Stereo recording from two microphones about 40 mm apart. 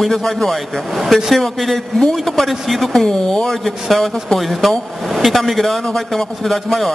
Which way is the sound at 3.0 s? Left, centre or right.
Centre.